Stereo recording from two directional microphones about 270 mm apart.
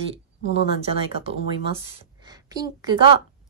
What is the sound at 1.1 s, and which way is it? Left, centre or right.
A woman's voice, right.